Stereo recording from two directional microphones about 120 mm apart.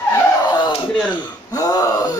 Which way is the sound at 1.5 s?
30° left (ahead or behind).